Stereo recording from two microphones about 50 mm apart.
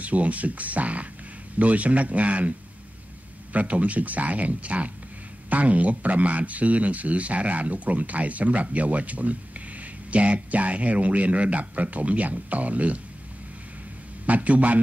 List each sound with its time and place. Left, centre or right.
0.0 s speech: right
3.5 s speech: right
14.2 s speech: right